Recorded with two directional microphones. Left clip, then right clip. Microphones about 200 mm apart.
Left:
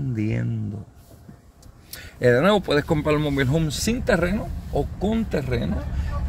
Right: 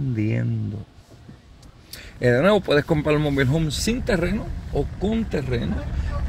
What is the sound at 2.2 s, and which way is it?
Speech, 5° right (ahead or behind).